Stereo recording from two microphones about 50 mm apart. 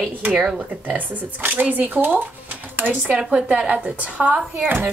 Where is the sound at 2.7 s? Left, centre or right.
Right.